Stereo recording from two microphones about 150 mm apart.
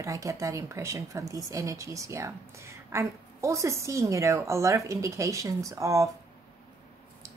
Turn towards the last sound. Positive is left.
turn(degrees=-20)  # may be behind; listen again after turning